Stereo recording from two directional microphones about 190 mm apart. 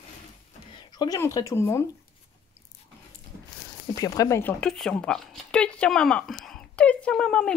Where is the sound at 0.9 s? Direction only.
20° left (ahead or behind).